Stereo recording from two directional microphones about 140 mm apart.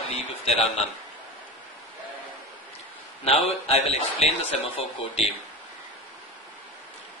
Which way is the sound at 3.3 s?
45° left (ahead or behind).